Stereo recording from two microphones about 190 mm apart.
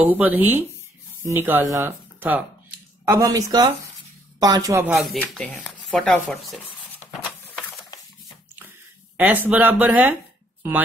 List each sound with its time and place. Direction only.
0.0 s speech: 10° right (ahead or behind)
5.3 s speech: 5° left (ahead or behind)
7.1 s a sound: centre (ahead or behind)
9.1 s speech: 10° right (ahead or behind)